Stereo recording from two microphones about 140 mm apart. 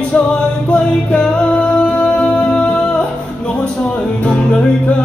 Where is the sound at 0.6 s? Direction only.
10° left (ahead or behind).